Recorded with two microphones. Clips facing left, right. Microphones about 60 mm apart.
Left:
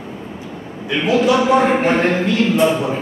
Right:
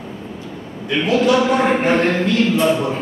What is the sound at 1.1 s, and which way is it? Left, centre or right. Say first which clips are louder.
A man's voice: left 2 dB; centre.